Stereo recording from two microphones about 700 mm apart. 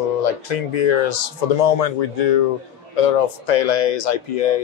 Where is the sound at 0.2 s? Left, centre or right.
Left.